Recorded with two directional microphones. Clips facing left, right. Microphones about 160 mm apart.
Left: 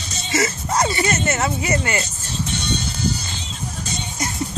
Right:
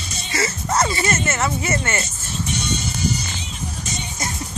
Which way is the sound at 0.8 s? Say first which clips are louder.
Left 4 dB; 20° left (ahead or behind).